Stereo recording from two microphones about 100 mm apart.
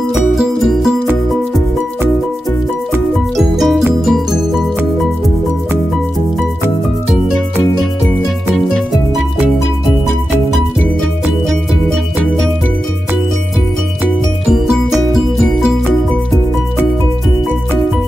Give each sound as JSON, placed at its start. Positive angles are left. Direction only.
{"t": 0.1, "sound": "music", "side_deg": 0}
{"t": 3.3, "sound": "music", "side_deg": 0}